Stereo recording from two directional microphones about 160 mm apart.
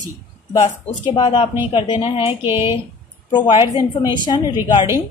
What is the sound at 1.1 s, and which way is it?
A woman's voice, 30° left (ahead or behind).